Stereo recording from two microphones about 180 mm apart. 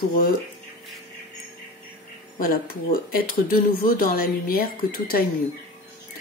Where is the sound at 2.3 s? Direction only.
55° left (ahead or behind).